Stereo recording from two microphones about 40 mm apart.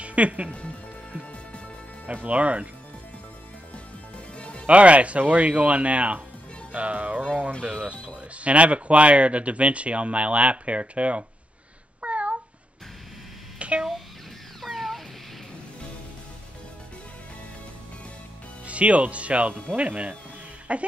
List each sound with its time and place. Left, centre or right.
0.0 s music: right
0.5 s speech: left
2.2 s speech: right
4.4 s music: left
4.6 s speech: right
8.4 s speech: right
12.0 s a sound: right
13.6 s a sound: right
14.6 s cat: centre
18.7 s speech: right